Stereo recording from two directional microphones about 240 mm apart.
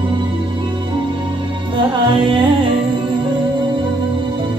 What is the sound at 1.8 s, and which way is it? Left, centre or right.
Music, centre.